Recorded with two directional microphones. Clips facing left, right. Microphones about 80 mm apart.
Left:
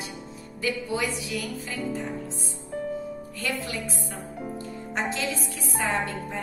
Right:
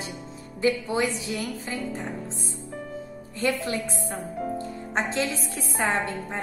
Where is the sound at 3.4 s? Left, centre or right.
Right.